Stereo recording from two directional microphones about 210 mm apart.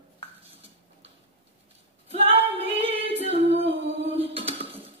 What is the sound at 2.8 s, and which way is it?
Singing, 30° right (ahead or behind).